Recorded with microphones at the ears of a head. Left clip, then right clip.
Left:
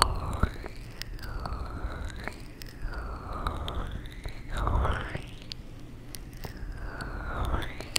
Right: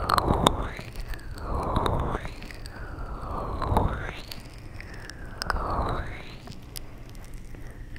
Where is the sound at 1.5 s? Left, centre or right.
Right.